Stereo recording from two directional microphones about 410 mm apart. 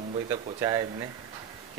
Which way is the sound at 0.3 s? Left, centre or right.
Centre.